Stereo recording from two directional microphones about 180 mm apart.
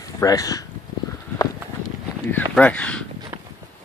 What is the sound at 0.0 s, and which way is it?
Speech, 20° left (ahead or behind).